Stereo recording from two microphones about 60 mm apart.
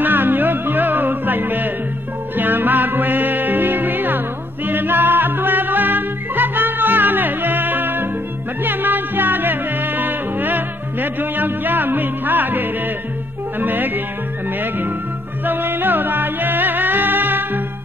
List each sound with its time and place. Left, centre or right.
0.0 s music: right
4.6 s yodeling: right
8.6 s music: right